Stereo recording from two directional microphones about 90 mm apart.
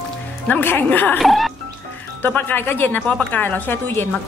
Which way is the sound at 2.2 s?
20° left (ahead or behind).